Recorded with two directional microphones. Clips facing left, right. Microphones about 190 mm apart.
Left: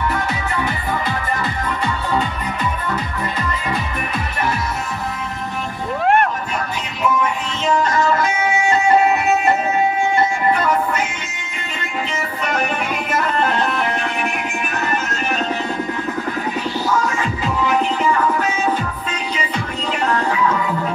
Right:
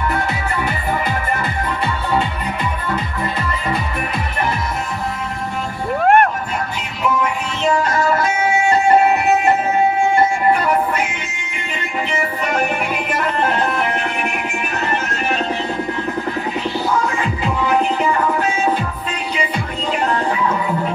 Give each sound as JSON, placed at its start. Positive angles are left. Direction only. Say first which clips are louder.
{"t": 6.0, "sound": "music", "louder": "right 3 dB", "side_deg": -50}
{"t": 17.6, "sound": "music", "louder": "right 1 dB", "side_deg": -35}
{"t": 20.1, "sound": "music", "louder": "left 3 dB", "side_deg": -30}